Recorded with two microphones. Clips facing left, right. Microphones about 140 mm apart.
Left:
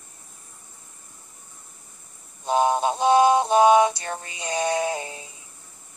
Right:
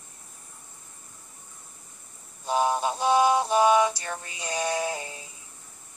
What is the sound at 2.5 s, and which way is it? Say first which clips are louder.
Music: left 4 dB; 20° left (ahead or behind).